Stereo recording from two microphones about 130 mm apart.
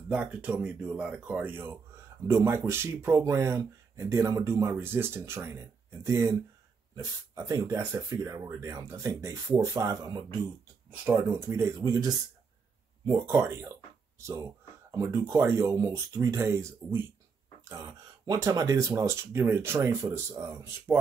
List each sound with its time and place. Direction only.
0.1 s speech: 10° right (ahead or behind); by 10.2 s 30° right (ahead or behind)
11.1 s speech: 15° right (ahead or behind)
17.6 s speech: 25° right (ahead or behind)